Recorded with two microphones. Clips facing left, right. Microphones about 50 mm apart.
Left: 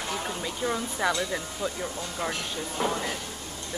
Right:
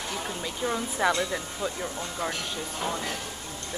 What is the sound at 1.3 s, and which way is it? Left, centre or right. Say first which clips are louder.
Speech: even; centre.